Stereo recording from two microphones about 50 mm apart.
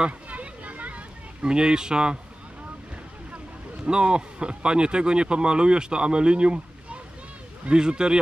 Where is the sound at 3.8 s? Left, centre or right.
Centre.